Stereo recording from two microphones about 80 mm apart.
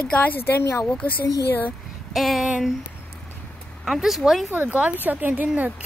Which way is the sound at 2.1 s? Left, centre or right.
Centre.